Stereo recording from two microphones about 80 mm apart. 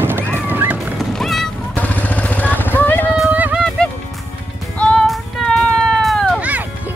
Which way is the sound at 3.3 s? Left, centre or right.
Centre.